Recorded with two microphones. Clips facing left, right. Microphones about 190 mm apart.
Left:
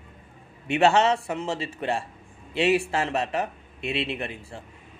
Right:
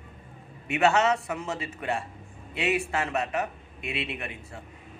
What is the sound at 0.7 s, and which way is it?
A man's voice, 30° left (ahead or behind).